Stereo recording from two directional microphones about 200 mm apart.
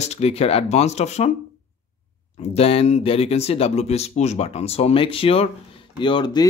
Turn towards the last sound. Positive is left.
turn(degrees=20)  # may be behind; listen again after turning